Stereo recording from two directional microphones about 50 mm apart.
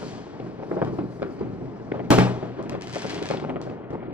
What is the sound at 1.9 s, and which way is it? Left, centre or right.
Fireworks, right.